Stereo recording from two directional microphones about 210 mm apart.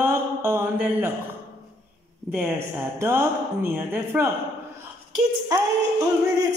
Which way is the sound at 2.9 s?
10° right (ahead or behind).